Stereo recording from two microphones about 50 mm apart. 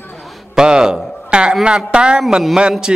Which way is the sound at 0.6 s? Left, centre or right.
Centre.